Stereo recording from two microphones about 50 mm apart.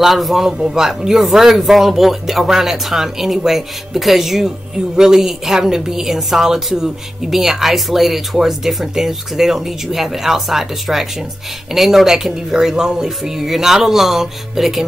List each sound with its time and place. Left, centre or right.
0.0 s a man's voice: centre